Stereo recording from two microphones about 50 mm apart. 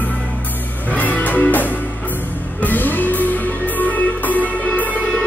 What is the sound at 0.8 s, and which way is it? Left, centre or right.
Music, left.